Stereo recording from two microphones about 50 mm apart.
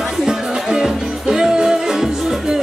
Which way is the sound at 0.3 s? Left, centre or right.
Centre.